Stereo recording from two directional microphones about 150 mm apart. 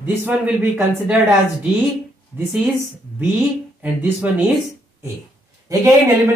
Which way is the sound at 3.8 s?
10° right (ahead or behind).